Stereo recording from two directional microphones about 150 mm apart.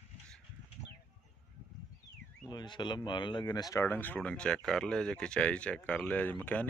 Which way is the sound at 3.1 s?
30° left (ahead or behind).